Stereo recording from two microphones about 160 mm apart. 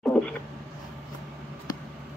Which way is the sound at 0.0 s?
10° left (ahead or behind).